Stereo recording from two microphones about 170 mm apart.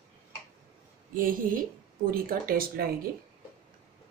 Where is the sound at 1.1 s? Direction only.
55° right (ahead or behind).